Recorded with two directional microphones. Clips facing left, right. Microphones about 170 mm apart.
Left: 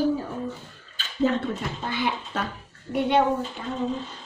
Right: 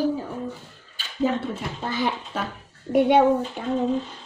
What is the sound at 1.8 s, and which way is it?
Speech, 40° right (ahead or behind).